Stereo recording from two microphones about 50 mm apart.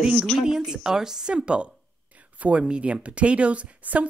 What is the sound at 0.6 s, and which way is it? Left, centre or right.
Speech, centre.